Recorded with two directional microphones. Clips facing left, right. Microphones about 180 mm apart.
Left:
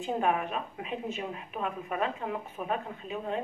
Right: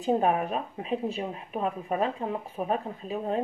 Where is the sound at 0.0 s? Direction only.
35° right (ahead or behind).